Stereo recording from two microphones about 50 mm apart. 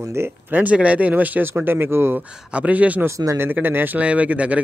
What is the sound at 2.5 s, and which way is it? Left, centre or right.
Speech, right.